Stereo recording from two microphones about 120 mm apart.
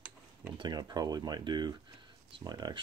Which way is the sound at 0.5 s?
35° right (ahead or behind).